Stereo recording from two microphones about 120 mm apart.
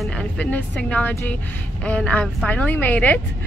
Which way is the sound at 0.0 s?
10° left (ahead or behind).